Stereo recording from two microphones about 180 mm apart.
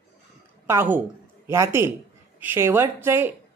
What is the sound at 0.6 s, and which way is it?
A woman's voice, 10° right (ahead or behind).